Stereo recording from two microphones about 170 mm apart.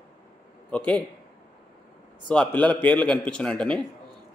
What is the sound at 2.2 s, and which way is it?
A man's voice, 5° left (ahead or behind).